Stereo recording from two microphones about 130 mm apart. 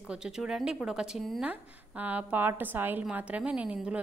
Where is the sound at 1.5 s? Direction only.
10° right (ahead or behind).